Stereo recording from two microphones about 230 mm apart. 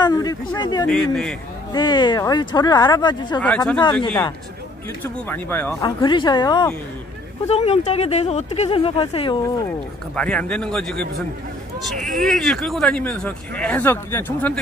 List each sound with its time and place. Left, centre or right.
0.0 s speech: centre
3.3 s speech: centre
5.0 s speech: centre
10.1 s speech: centre